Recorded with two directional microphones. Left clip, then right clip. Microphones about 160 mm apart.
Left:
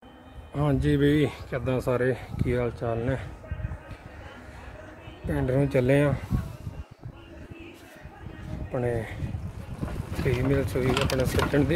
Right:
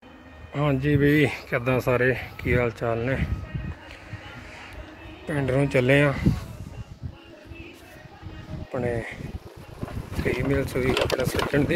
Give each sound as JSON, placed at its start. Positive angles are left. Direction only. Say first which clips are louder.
{"t": 0.5, "sound": "a man's voice", "louder": "right 2 dB", "side_deg": 20}
{"t": 1.1, "sound": "speech", "louder": "right 4 dB", "side_deg": -5}
{"t": 5.3, "sound": "speech", "louder": "right 2 dB", "side_deg": 5}
{"t": 8.7, "sound": "a man's voice", "louder": "right 1 dB", "side_deg": 10}
{"t": 10.2, "sound": "speech", "louder": "right 1 dB", "side_deg": 5}